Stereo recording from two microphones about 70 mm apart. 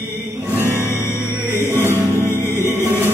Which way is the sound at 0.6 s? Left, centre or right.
Right.